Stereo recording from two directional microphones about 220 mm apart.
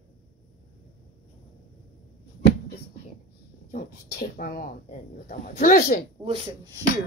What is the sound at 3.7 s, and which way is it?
Speech, 45° left (ahead or behind).